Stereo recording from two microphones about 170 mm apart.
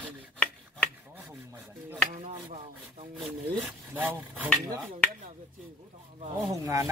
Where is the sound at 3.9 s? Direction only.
10° right (ahead or behind).